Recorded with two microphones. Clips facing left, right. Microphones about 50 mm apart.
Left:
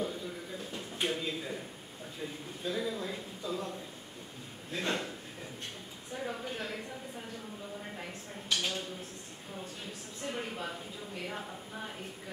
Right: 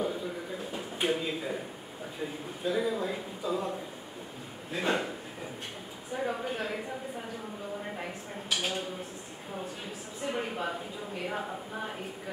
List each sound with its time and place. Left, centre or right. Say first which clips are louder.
0.0 s a sound: right 4 dB; centre
2.2 s a man's voice: right 5 dB; centre
6.1 s a man's voice: right 5 dB; centre
10.2 s a man's voice: right 5 dB; centre